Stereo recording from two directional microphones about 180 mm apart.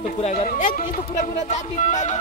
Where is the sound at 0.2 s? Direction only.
40° left (ahead or behind).